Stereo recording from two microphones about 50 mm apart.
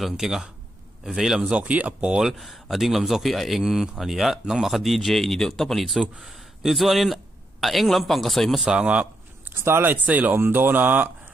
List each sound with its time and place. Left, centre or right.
0.0 s speech: centre
1.5 s speech: right
2.0 s speech: centre
8.6 s speech: centre
9.5 s speech: right
10.0 s speech: right
10.4 s speech: right